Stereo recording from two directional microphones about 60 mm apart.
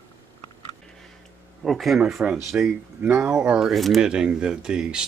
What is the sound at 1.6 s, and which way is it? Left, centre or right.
Speech, centre.